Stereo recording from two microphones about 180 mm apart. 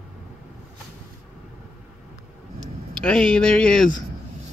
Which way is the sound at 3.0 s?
5° left (ahead or behind).